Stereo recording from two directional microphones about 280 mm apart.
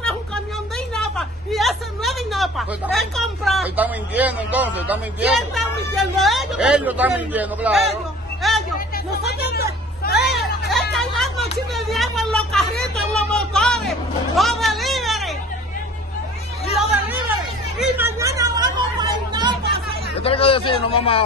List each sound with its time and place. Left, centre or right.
0.9 s a sound: centre
5.5 s speech: centre
8.4 s music: centre
8.7 s chatter: left
10.3 s chatter: centre
11.7 s a sound: centre
17.7 s chatter: centre
20.2 s speech: centre